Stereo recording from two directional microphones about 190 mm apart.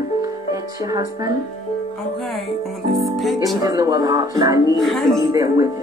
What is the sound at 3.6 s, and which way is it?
A woman's voice, 20° right (ahead or behind).